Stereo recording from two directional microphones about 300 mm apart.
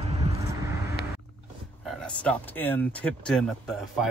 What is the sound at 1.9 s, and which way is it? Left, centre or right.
Speech, centre.